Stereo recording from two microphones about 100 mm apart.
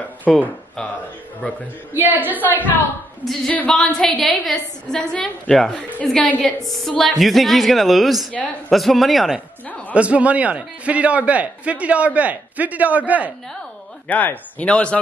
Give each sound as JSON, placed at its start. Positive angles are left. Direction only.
{"t": 0.3, "sound": "a woman's voice", "side_deg": 0}
{"t": 1.4, "sound": "a woman's voice", "side_deg": 15}
{"t": 2.0, "sound": "a man's voice", "side_deg": -20}
{"t": 3.5, "sound": "a woman's voice", "side_deg": 5}
{"t": 6.6, "sound": "a woman's voice", "side_deg": 0}
{"t": 9.9, "sound": "a man's voice", "side_deg": -15}
{"t": 14.0, "sound": "a woman's voice", "side_deg": 15}